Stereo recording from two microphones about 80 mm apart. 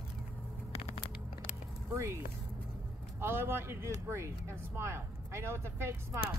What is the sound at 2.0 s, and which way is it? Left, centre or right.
Speech, right.